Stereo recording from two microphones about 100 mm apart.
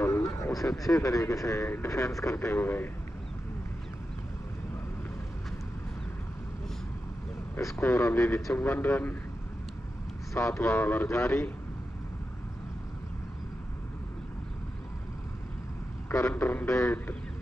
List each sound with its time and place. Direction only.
0.0 s a man's voice: 30° left (ahead or behind)
7.6 s speech: 25° left (ahead or behind)
10.3 s speech: 30° left (ahead or behind)
16.1 s speech: 25° left (ahead or behind)